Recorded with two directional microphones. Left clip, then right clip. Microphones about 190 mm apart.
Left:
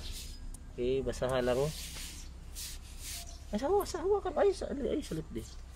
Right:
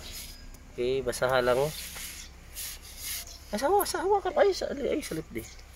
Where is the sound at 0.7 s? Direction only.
20° right (ahead or behind).